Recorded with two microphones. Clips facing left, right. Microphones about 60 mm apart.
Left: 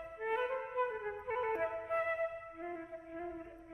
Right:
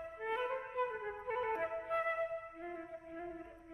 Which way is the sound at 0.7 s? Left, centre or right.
Centre.